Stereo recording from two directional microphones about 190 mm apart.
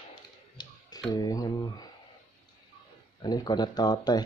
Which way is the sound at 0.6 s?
25° left (ahead or behind).